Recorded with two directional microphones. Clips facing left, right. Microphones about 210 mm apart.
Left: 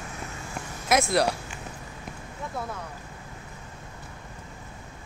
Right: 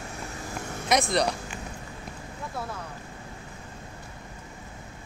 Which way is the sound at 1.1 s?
5° left (ahead or behind).